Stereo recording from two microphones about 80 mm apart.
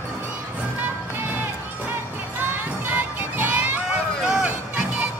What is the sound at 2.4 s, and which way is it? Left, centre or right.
Music, right.